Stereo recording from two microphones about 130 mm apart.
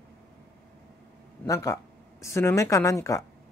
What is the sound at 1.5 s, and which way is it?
Speech, 25° left (ahead or behind).